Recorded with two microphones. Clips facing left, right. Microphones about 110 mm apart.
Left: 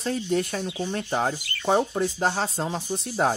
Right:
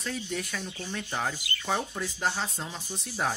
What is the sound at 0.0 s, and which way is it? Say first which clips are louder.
Speech: left 9 dB; 40° left (ahead or behind).